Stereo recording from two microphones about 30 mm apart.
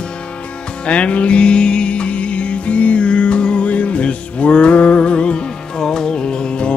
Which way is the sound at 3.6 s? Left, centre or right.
Left.